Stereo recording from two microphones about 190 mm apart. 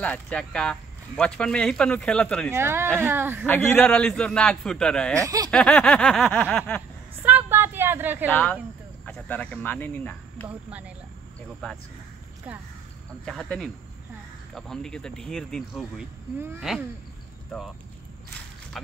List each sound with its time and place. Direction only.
0.0 s speech: 5° left (ahead or behind)
2.5 s speech: 10° right (ahead or behind)
3.4 s speech: 10° left (ahead or behind)
5.2 s speech: 20° right (ahead or behind)
5.5 s speech: 5° left (ahead or behind)
7.2 s a sound: 10° right (ahead or behind)
8.3 s speech: 5° left (ahead or behind)
10.5 s speech: 5° right (ahead or behind)
11.6 s speech: 5° left (ahead or behind)
13.2 s speech: 5° left (ahead or behind)